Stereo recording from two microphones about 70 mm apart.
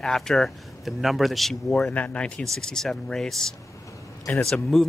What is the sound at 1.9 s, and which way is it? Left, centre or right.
Speech, centre.